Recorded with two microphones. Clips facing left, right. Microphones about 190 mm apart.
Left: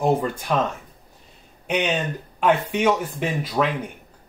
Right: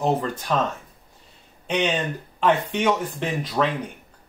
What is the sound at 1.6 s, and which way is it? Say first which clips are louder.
Speech: even; 10° left (ahead or behind).